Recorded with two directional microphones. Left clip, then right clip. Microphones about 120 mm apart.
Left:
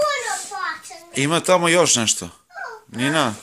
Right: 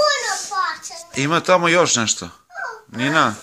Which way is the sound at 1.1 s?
35° left (ahead or behind).